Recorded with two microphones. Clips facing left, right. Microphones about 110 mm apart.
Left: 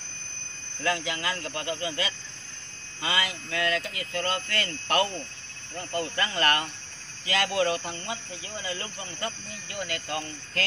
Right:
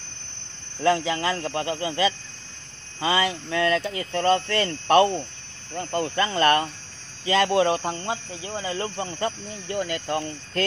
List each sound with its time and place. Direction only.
0.8 s speech: 30° right (ahead or behind)